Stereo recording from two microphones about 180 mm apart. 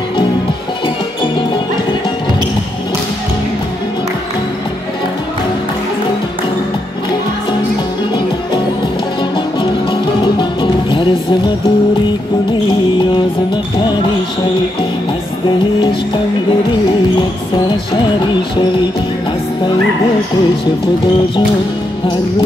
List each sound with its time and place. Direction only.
0.8 s music: 25° left (ahead or behind)
10.4 s music: 25° left (ahead or behind)